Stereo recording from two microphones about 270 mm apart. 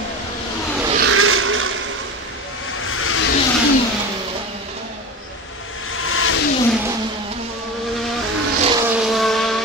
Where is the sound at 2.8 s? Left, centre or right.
Left.